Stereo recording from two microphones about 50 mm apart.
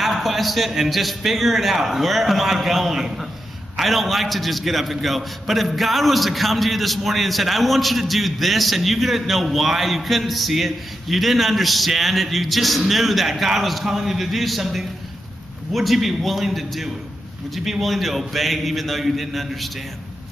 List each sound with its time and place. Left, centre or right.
0.0 s a man's voice: centre